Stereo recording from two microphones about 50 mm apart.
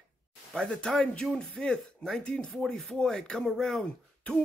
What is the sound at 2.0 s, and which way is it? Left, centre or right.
Speech, left.